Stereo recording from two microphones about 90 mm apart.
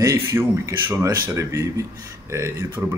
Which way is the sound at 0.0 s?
30° right (ahead or behind).